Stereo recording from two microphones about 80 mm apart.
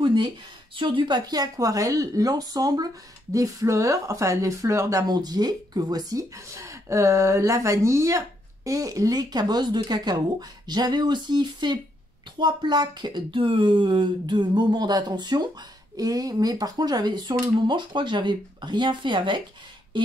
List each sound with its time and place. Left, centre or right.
0.0 s speech: right
5.0 s speech: right